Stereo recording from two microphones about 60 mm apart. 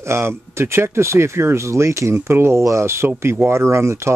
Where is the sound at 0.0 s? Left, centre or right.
Right.